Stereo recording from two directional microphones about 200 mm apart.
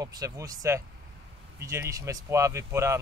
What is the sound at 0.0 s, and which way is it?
Speech, 15° right (ahead or behind).